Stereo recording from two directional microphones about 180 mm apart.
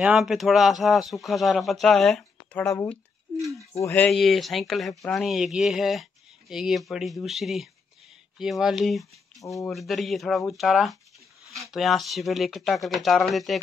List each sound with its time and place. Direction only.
0.0 s speech: 5° right (ahead or behind)
2.7 s speech: 15° left (ahead or behind); by 13.6 s centre (ahead or behind)